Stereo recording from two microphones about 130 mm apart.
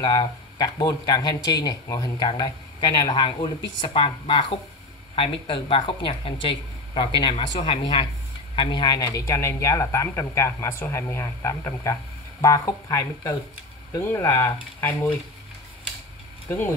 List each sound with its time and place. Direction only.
0.0 s a woman's voice: 30° left (ahead or behind)